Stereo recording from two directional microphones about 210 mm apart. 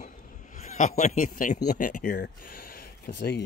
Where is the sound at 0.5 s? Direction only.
35° left (ahead or behind).